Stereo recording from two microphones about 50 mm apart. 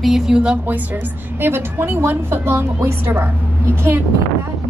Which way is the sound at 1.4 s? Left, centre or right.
Right.